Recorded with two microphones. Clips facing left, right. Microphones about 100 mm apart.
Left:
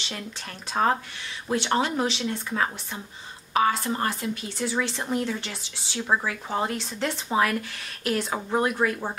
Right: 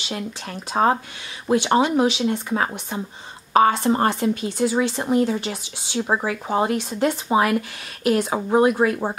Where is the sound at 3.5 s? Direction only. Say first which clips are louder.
Right 7 dB; 30° right (ahead or behind).